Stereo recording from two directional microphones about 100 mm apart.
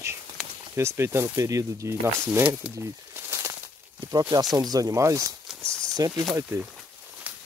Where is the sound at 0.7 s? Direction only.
25° right (ahead or behind).